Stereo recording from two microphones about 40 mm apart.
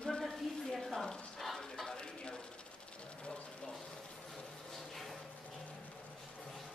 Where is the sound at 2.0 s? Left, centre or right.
Left.